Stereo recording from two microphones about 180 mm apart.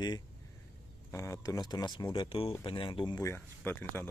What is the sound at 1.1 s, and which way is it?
Speech, 15° left (ahead or behind).